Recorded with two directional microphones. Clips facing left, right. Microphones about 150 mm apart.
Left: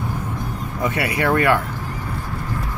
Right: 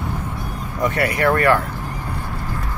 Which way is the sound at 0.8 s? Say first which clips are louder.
Right 2 dB; 15° left (ahead or behind).